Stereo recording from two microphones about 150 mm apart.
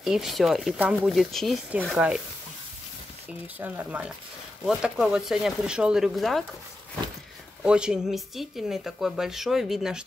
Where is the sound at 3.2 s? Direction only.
10° right (ahead or behind).